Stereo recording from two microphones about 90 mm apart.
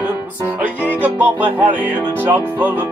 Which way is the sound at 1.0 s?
20° right (ahead or behind).